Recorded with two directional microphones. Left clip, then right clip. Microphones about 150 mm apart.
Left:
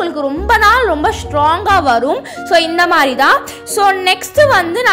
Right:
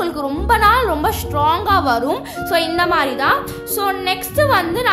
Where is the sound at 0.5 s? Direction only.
25° left (ahead or behind).